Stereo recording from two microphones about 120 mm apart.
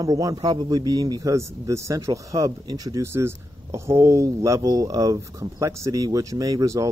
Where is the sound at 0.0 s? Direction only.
30° right (ahead or behind).